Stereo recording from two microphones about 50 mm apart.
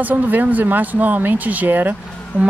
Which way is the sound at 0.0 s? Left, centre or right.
Right.